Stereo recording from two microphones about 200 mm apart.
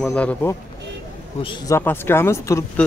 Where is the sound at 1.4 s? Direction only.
25° left (ahead or behind).